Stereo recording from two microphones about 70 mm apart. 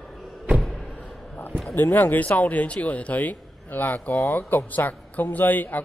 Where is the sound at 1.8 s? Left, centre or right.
Left.